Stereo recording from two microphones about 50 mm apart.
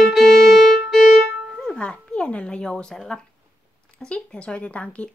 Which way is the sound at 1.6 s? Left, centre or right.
Centre.